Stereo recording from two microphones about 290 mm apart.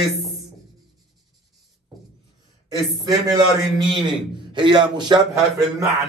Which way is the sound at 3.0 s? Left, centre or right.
Centre.